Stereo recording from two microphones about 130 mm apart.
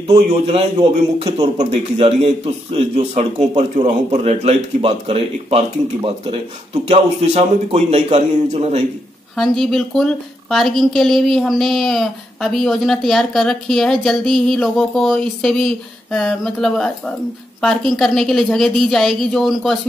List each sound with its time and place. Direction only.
1.6 s a man's voice: 55° right (ahead or behind)
9.4 s a woman's voice: centre (ahead or behind)